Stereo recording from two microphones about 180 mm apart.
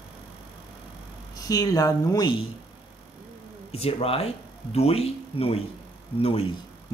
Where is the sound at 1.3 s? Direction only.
20° left (ahead or behind).